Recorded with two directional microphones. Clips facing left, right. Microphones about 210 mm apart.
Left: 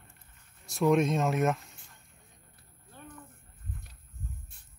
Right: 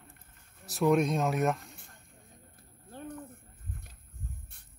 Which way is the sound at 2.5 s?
50° right (ahead or behind).